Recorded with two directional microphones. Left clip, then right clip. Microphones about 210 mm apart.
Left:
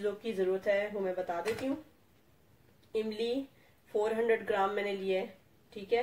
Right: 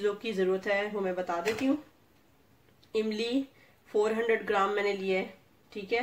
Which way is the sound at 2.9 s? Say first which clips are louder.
Right 3 dB; 45° right (ahead or behind).